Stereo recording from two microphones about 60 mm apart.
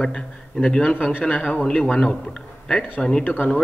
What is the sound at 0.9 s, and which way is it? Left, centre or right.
Speech, left.